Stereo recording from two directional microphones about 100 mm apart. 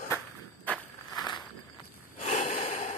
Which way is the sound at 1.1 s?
40° left (ahead or behind).